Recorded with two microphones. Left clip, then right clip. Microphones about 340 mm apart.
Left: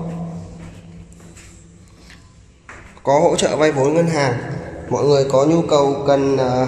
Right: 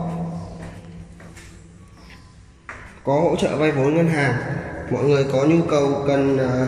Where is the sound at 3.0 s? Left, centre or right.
Left.